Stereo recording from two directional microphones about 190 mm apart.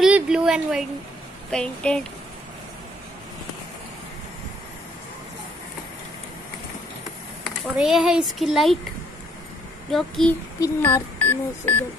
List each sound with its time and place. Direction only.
0.0 s a sound: 5° right (ahead or behind)
1.5 s a child's voice: 5° left (ahead or behind)
7.6 s a child's voice: 5° right (ahead or behind)
9.8 s a child's voice: centre (ahead or behind)